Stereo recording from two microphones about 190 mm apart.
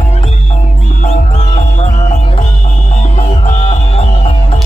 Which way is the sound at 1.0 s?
40° left (ahead or behind).